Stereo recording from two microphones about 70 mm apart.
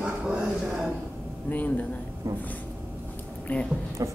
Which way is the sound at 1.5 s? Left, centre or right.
Left.